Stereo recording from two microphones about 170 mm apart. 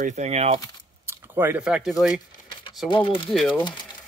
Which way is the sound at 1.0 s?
15° right (ahead or behind).